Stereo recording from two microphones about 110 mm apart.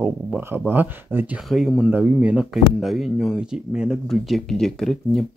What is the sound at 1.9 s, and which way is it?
Speech, 15° right (ahead or behind).